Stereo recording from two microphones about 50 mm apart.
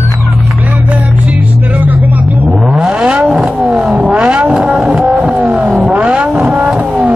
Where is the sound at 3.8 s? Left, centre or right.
Right.